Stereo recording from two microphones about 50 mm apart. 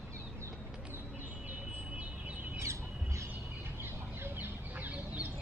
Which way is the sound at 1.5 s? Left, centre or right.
Right.